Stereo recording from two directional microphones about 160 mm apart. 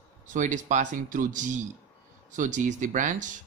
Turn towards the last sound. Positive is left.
turn(degrees=-55)  # may be behind; listen again after turning